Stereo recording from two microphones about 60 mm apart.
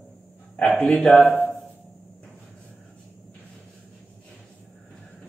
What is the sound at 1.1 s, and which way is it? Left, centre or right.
Speech, centre.